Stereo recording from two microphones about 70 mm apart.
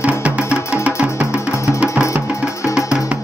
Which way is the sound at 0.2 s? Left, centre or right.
Centre.